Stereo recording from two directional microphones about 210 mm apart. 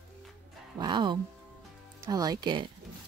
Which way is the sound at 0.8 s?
20° right (ahead or behind).